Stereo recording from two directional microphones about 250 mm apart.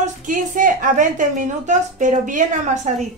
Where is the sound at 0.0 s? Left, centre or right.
Right.